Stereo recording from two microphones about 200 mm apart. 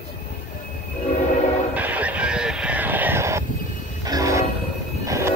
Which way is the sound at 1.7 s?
10° right (ahead or behind).